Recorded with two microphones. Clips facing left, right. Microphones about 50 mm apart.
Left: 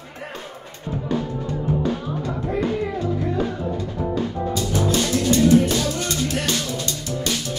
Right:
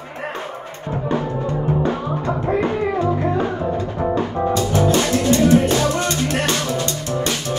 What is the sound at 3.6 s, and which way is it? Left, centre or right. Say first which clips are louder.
Music: right 5 dB; right.